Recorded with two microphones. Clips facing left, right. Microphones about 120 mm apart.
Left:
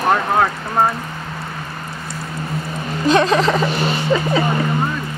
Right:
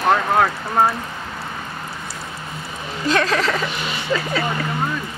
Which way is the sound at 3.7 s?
40° left (ahead or behind).